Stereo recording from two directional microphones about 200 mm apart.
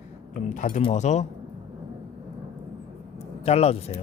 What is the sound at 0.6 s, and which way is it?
Speech, 40° left (ahead or behind).